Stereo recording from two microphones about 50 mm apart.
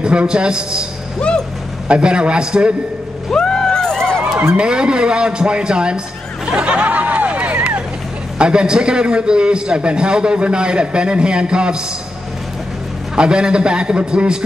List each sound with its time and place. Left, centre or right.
0.0 s a man's voice: centre
1.2 s speech: centre
1.9 s a man's voice: centre
3.3 s vehicle: centre
4.6 s a man's voice: centre
6.5 s a sound: right
8.4 s a man's voice: centre
13.1 s a man's voice: centre